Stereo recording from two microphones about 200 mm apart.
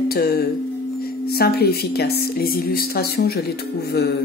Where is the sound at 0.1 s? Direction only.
50° left (ahead or behind).